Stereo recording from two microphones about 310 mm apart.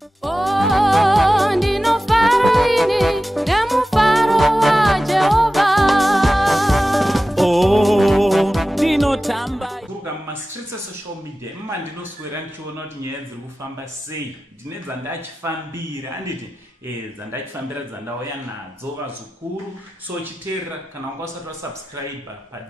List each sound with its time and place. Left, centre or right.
0.2 s music: centre
15.0 s speech: centre